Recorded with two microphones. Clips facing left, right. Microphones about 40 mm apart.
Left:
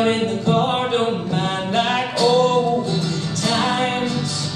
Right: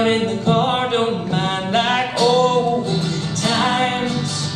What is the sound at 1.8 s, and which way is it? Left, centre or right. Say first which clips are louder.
Music: right 2 dB; right.